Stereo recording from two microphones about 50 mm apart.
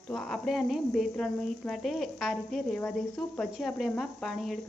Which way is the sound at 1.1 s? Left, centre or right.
Centre.